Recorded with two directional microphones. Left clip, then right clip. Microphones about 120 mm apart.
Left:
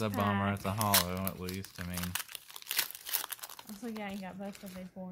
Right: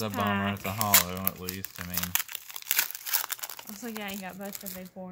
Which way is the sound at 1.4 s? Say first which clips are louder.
Right 3 dB; 20° right (ahead or behind).